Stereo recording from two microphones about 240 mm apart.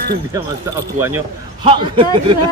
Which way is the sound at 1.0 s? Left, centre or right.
Centre.